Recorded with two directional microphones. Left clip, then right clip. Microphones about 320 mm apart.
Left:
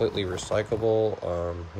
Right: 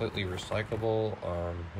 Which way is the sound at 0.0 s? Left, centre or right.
Centre.